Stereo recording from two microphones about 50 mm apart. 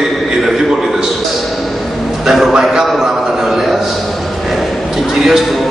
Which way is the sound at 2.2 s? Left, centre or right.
Centre.